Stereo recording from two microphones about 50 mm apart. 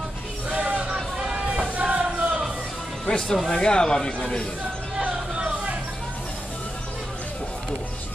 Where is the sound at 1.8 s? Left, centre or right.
Centre.